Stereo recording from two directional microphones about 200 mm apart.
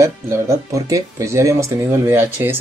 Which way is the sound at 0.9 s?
15° right (ahead or behind).